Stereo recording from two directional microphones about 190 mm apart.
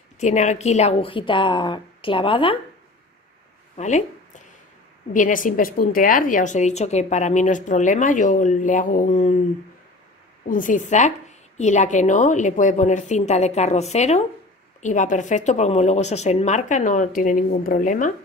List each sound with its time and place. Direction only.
0.2 s a woman's voice: 40° left (ahead or behind)
3.7 s a woman's voice: 40° left (ahead or behind)
10.5 s a woman's voice: 45° left (ahead or behind)